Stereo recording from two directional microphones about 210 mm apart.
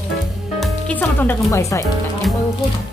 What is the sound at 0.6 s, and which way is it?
Speech, 5° left (ahead or behind).